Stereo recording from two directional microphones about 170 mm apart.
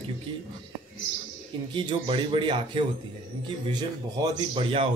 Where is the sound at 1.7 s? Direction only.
30° right (ahead or behind).